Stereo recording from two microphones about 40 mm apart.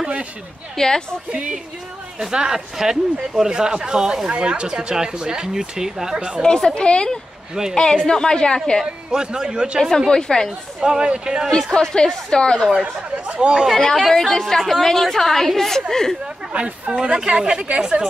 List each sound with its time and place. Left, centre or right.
0.7 s a woman's voice: centre
2.1 s speech: centre
6.4 s a woman's voice: centre
9.1 s speech: centre
9.8 s a woman's voice: centre
10.8 s speech: right
11.7 s a woman's voice: centre
13.4 s speech: right
13.7 s a woman's voice: centre
16.5 s speech: right